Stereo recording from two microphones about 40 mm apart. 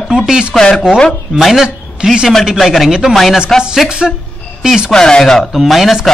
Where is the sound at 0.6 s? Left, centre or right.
Left.